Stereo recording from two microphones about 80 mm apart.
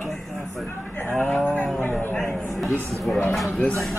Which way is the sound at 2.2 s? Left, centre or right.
Centre.